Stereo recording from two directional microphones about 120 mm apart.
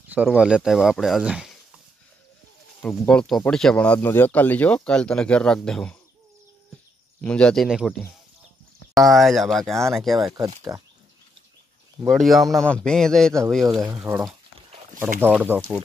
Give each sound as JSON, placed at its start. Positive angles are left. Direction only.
{"t": 0.1, "sound": "speech", "side_deg": -5}
{"t": 2.8, "sound": "speech", "side_deg": 10}
{"t": 7.2, "sound": "speech", "side_deg": 10}
{"t": 7.6, "sound": "speech", "side_deg": -5}
{"t": 8.9, "sound": "speech", "side_deg": 0}
{"t": 10.7, "sound": "speech", "side_deg": -30}
{"t": 12.1, "sound": "speech", "side_deg": 0}
{"t": 14.0, "sound": "speech", "side_deg": -20}
{"t": 15.4, "sound": "speech", "side_deg": -15}